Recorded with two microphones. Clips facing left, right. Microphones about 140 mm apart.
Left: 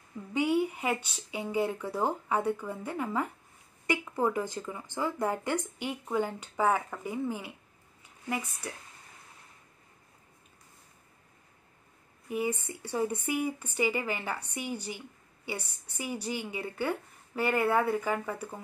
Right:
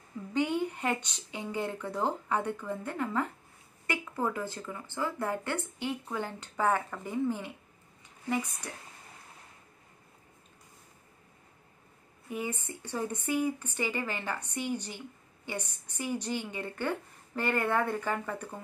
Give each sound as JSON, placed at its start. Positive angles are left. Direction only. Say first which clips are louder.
{"t": 0.3, "sound": "speech", "louder": "left 2 dB", "side_deg": 10}
{"t": 12.3, "sound": "a woman's voice", "louder": "left 4 dB", "side_deg": 10}